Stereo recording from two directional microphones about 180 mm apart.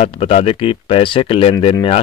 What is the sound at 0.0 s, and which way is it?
Speech, 35° left (ahead or behind).